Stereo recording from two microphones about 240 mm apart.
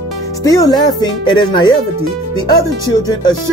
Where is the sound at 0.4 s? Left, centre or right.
Centre.